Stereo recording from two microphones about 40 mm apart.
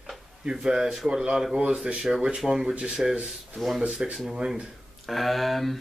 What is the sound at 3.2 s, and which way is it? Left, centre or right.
Speech, centre.